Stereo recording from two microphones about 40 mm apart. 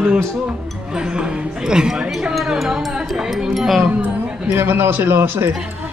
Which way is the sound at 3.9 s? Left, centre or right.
Right.